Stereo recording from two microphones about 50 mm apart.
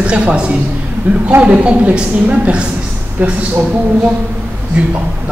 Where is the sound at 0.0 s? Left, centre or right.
Right.